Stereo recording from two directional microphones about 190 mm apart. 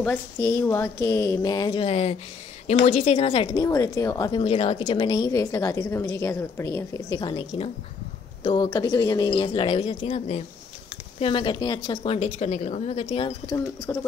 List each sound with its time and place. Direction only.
0.0 s a woman's voice: 10° left (ahead or behind); by 3.6 s 30° left (ahead or behind)
3.6 s a woman's voice: 15° left (ahead or behind)
13.9 s a woman's voice: 10° left (ahead or behind)